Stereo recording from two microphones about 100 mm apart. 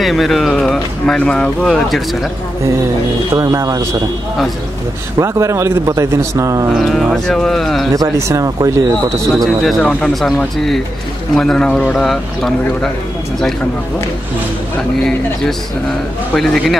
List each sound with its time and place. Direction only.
0.0 s speech: centre (ahead or behind)
3.3 s a man's voice: 35° right (ahead or behind)
5.2 s a man's voice: 30° right (ahead or behind)
6.7 s speech: centre (ahead or behind)
7.9 s a man's voice: 30° right (ahead or behind)
9.4 s speech: 5° left (ahead or behind)
16.3 s speech: 5° left (ahead or behind)